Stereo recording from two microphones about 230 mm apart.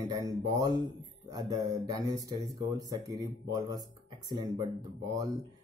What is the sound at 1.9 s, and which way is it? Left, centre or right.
Speech, centre.